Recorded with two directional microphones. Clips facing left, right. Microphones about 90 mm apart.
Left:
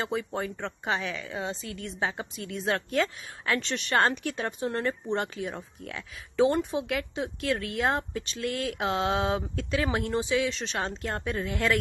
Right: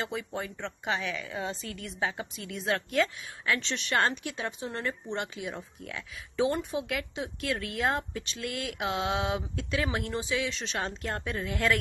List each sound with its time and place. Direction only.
0.0 s a woman's voice: 30° left (ahead or behind)